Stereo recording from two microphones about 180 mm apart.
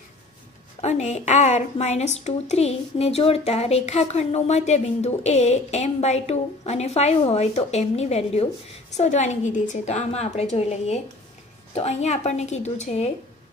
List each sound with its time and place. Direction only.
0.7 s a woman's voice: 40° left (ahead or behind)